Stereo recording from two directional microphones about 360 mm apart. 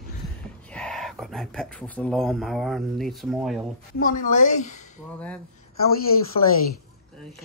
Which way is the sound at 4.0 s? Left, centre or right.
Left.